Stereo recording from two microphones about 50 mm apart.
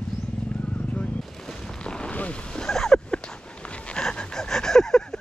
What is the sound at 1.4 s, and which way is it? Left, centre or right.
Boat, centre.